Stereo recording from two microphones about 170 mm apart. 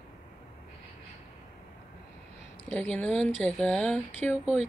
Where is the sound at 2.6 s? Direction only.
10° left (ahead or behind).